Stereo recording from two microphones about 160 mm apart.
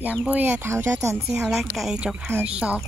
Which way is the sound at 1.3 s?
5° right (ahead or behind).